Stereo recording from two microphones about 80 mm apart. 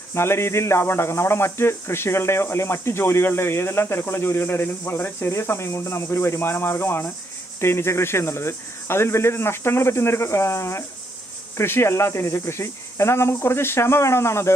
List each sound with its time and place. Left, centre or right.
0.1 s speech: left